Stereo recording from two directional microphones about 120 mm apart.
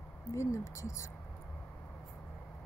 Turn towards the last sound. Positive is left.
turn(degrees=25)  # may be behind; listen again after turning